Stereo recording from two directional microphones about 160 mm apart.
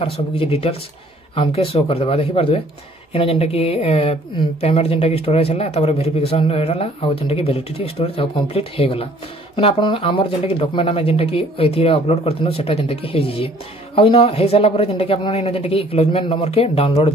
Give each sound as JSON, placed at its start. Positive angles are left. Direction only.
{"t": 0.0, "sound": "speech", "side_deg": 35}